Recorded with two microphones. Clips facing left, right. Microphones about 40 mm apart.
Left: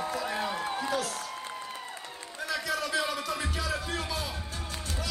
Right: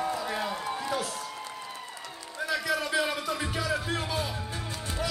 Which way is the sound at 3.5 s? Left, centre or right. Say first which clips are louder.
Right 3 dB; centre.